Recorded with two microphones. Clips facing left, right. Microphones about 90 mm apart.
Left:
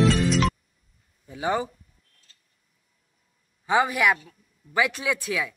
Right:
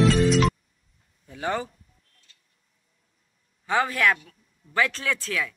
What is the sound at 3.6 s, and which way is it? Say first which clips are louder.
Speech: left 1 dB; 15° left (ahead or behind).